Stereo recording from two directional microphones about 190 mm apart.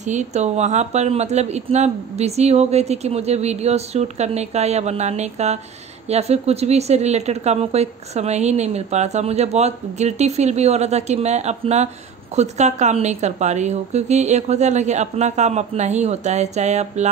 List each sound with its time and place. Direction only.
0.0 s a woman's voice: 40° right (ahead or behind)